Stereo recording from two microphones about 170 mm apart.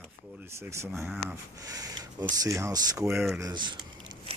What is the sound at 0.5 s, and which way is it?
Speech, 15° right (ahead or behind).